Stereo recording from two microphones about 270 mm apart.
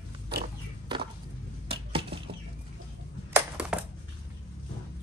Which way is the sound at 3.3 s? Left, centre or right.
Centre.